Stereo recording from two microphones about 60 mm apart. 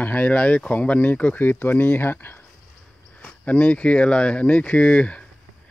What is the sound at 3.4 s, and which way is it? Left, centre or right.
Speech, centre.